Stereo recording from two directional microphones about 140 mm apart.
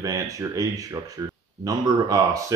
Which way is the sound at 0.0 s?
25° right (ahead or behind).